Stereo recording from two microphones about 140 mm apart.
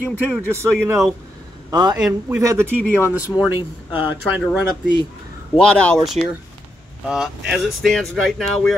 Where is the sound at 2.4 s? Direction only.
20° right (ahead or behind).